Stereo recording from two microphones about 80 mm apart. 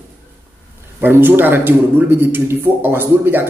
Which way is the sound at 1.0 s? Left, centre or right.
Right.